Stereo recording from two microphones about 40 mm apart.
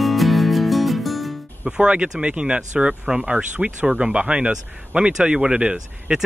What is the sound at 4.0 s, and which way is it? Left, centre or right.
Speech, right.